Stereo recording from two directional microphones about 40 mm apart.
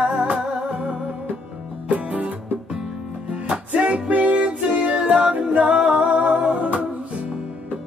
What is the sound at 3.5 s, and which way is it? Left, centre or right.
Music, right.